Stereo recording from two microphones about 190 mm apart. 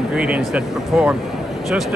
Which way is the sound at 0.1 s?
5° right (ahead or behind).